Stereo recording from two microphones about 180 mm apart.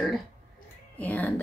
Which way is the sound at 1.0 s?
10° left (ahead or behind).